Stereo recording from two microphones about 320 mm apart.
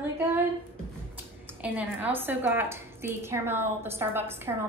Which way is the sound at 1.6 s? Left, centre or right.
Centre.